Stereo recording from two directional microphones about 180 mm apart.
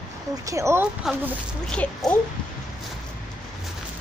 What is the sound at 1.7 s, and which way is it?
Speech, 5° left (ahead or behind).